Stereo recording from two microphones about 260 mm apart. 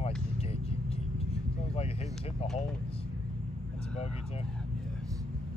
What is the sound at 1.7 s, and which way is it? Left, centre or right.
Speech, left.